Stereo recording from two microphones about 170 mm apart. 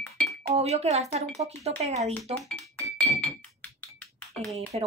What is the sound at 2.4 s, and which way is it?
Music, 5° left (ahead or behind).